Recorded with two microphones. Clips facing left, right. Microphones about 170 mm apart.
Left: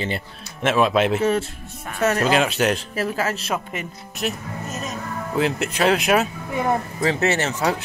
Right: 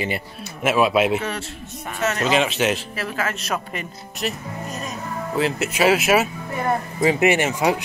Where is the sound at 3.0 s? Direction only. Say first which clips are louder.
Left 3 dB; 30° left (ahead or behind).